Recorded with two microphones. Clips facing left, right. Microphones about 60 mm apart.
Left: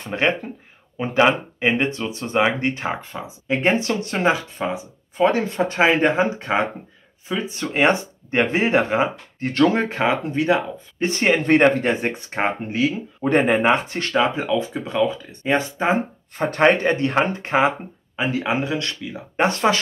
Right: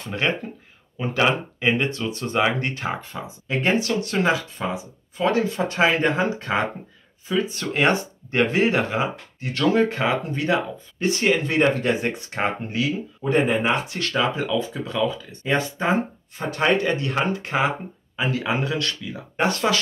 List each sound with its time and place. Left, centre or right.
0.0 s speech: left
9.4 s speech: left
9.8 s speech: left
11.1 s speech: left
11.8 s speech: left
13.7 s speech: left
16.3 s speech: left